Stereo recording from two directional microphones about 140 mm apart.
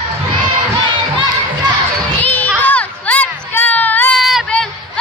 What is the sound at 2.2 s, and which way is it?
Crowd, 15° left (ahead or behind).